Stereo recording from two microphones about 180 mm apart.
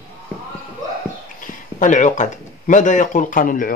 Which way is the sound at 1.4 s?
45° left (ahead or behind).